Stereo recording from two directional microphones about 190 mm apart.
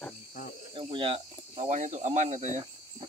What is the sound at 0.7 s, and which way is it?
Speech, 25° right (ahead or behind).